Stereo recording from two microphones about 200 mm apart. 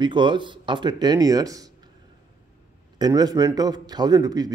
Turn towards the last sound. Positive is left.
turn(degrees=-20)  # may be behind; listen again after turning